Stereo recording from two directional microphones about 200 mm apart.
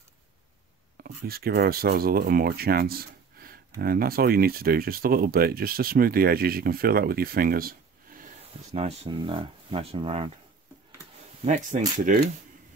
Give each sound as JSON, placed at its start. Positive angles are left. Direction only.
{"t": 0.9, "sound": "speech", "side_deg": -50}
{"t": 8.7, "sound": "speech", "side_deg": -30}
{"t": 11.4, "sound": "speech", "side_deg": -40}